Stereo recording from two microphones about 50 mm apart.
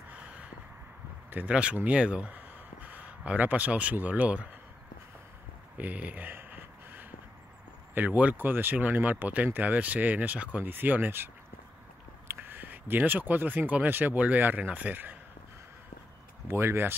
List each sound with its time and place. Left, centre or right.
0.1 s a sound: right
1.5 s speech: right
2.3 s a sound: right
3.9 s speech: right
5.8 s speech: right
6.3 s a sound: right
7.9 s speech: right
10.6 s speech: right
12.4 s speech: right
16.4 s speech: right